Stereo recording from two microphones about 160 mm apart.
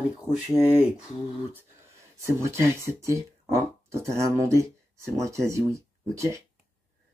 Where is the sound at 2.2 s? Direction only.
15° right (ahead or behind).